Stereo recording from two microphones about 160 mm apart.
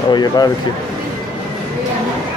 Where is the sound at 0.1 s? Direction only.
25° left (ahead or behind).